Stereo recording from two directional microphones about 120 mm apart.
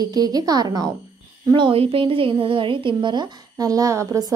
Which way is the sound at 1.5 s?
45° right (ahead or behind).